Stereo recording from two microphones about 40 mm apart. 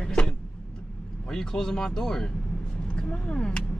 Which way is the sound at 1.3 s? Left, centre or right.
Centre.